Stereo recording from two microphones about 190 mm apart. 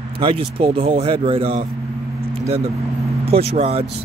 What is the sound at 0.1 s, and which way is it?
Speech, 30° right (ahead or behind).